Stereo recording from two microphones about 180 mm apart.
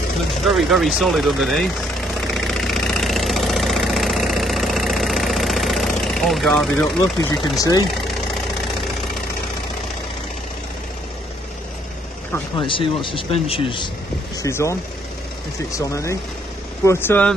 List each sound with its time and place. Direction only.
0.5 s vehicle: centre (ahead or behind)
7.0 s speech: 20° left (ahead or behind)
12.5 s speech: 30° left (ahead or behind)
14.3 s speech: 15° left (ahead or behind)